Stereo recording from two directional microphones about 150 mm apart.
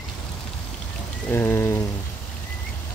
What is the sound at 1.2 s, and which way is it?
Raindrop, 15° left (ahead or behind).